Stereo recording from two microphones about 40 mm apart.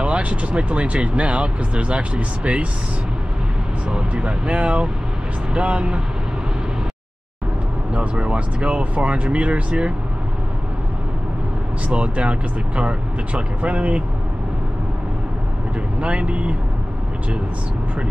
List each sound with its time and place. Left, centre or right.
0.0 s speech: right
3.9 s speech: right
8.2 s speech: right
11.9 s speech: right
16.0 s speech: right